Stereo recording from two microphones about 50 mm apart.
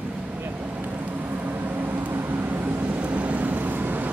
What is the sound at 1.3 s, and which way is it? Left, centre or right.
Vehicle, right.